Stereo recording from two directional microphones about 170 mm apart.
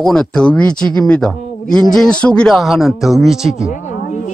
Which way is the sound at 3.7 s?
45° left (ahead or behind).